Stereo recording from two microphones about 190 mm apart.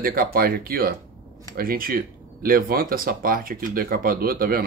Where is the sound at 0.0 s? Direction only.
50° right (ahead or behind).